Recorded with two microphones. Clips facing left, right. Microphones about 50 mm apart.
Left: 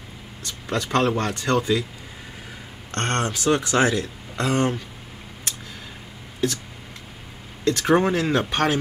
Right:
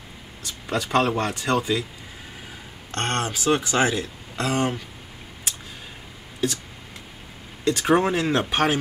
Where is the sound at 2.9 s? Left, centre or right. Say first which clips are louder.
Left 1 dB; centre.